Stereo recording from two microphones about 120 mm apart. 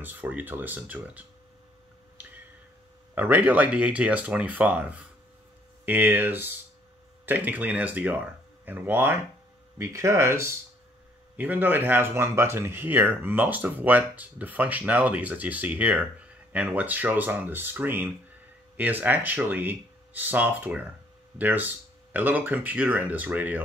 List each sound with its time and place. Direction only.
0.0 s speech: 15° right (ahead or behind)
3.2 s speech: 15° right (ahead or behind)